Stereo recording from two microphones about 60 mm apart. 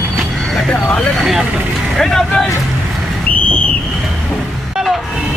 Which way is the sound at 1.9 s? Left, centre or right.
Centre.